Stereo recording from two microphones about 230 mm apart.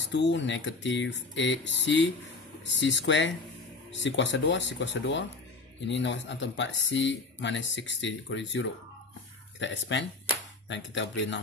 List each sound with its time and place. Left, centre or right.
0.1 s speech: left